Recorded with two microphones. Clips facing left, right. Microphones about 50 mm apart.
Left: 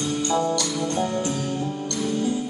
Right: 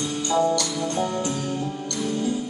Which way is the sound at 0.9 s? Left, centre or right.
Centre.